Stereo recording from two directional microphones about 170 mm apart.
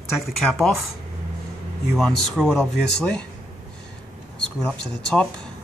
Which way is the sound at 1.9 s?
Centre (ahead or behind).